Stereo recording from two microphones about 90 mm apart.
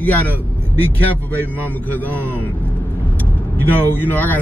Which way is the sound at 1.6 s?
20° left (ahead or behind).